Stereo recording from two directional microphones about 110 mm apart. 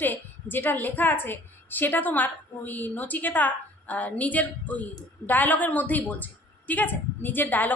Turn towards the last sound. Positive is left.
turn(degrees=15)  # may be behind; listen again after turning